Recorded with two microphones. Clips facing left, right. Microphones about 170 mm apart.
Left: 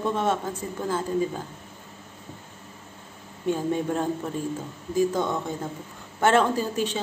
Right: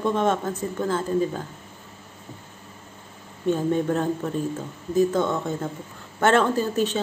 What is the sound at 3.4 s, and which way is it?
A woman's voice, 15° left (ahead or behind).